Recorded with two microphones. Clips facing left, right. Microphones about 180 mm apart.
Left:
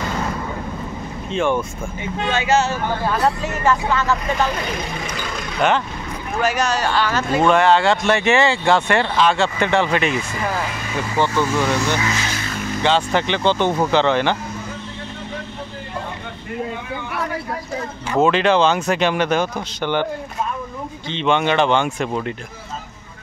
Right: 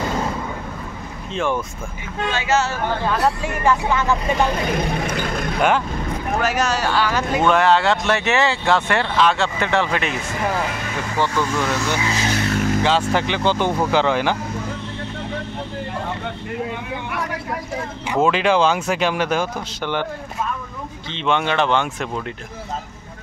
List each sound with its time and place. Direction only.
1.3 s speech: centre (ahead or behind)
2.2 s speech: 20° left (ahead or behind)
3.1 s speech: centre (ahead or behind)
3.6 s speech: 15° right (ahead or behind)
4.6 s a sound: 55° right (ahead or behind)
6.4 s speech: 5° right (ahead or behind)
7.4 s speech: centre (ahead or behind)
12.3 s vehicle: 65° right (ahead or behind)
12.8 s speech: 5° right (ahead or behind)
18.2 s speech: 5° right (ahead or behind)
21.1 s speech: centre (ahead or behind)